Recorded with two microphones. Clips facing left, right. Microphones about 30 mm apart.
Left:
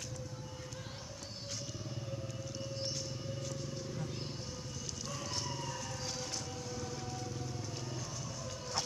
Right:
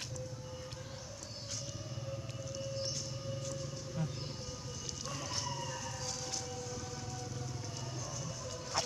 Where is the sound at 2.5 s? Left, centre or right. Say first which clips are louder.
Right 3 dB; centre.